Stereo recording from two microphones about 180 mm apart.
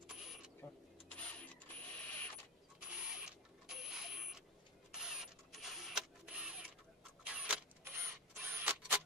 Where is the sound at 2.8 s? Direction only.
5° right (ahead or behind).